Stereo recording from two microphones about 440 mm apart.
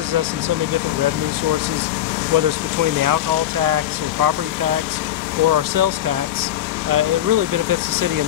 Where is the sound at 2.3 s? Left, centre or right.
Right.